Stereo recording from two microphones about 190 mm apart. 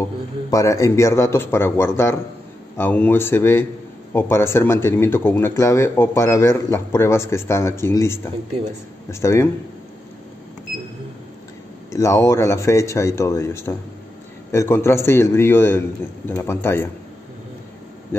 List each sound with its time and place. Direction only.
0.5 s speech: 15° left (ahead or behind)
11.9 s speech: 15° left (ahead or behind)